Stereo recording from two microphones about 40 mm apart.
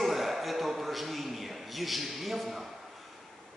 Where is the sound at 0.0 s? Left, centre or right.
Centre.